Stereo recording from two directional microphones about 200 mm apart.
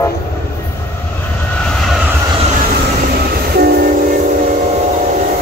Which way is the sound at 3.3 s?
50° right (ahead or behind).